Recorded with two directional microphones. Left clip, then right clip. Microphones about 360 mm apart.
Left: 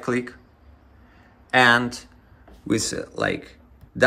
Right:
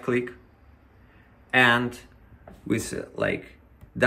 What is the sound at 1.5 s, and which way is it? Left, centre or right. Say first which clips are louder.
Speech: left 3 dB; centre.